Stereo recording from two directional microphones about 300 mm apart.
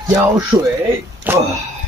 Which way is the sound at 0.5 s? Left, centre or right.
Centre.